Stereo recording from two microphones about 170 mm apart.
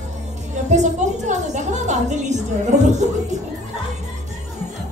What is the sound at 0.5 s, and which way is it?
A woman's voice, 45° right (ahead or behind).